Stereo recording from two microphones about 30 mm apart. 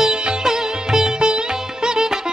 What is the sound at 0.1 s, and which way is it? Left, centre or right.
Sitar, centre.